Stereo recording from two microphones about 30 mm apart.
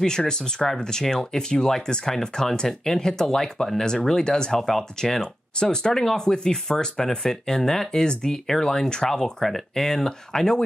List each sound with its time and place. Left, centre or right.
0.0 s speech: left
4.5 s speech: centre; by 9.2 s left
9.2 s speech: centre